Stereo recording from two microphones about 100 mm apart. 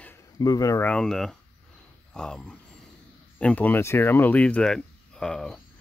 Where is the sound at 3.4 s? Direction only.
15° left (ahead or behind).